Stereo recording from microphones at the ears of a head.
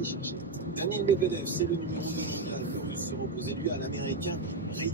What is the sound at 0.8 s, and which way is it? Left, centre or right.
Speech, right.